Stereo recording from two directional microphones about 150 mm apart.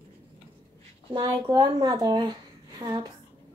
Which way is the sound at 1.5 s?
30° right (ahead or behind).